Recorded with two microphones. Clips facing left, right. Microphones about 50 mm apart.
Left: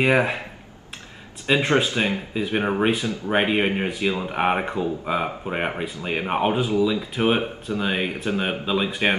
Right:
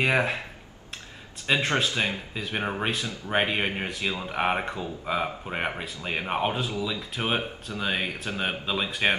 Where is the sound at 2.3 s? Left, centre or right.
Centre.